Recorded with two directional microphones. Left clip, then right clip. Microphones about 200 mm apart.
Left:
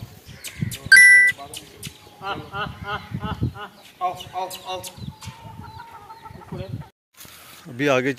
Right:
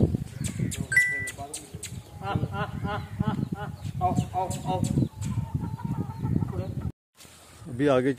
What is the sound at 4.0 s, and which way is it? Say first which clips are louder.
Speech: left 1 dB; 45° right (ahead or behind).